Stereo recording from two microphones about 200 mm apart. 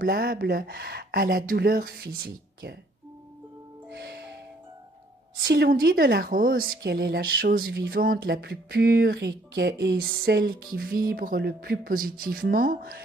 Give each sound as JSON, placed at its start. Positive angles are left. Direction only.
{"t": 0.0, "sound": "speech", "side_deg": -50}
{"t": 3.9, "sound": "music", "side_deg": -55}
{"t": 5.4, "sound": "speech", "side_deg": -55}